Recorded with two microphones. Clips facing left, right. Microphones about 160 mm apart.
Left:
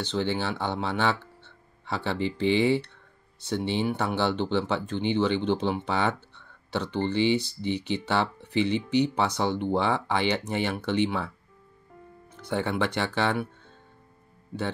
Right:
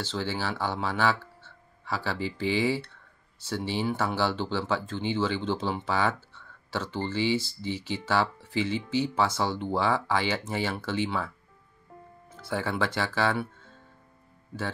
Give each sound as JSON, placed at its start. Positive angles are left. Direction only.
{"t": 0.0, "sound": "speech", "side_deg": 20}
{"t": 12.4, "sound": "speech", "side_deg": 20}